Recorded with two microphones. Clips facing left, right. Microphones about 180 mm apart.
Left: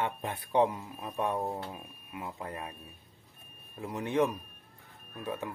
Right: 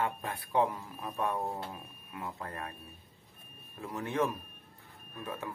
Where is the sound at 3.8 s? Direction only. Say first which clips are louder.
Left 4 dB; 20° left (ahead or behind).